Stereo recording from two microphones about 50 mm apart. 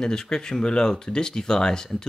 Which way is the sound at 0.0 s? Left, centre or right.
Centre.